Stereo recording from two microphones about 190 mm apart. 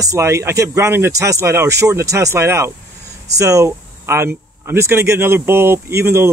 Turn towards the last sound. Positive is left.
turn(degrees=-15)  # may be behind; listen again after turning